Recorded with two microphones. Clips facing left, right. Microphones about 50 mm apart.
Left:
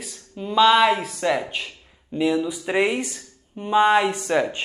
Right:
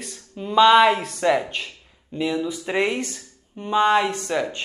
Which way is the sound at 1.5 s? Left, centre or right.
Centre.